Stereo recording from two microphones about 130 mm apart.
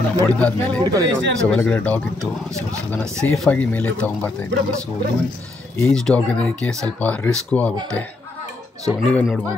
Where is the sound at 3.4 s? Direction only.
10° left (ahead or behind).